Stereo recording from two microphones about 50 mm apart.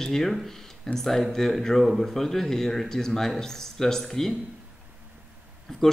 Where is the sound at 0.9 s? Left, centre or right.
Centre.